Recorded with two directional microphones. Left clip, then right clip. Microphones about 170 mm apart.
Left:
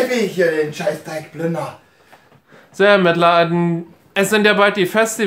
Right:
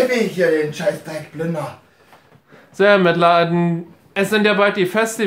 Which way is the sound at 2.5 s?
5° left (ahead or behind).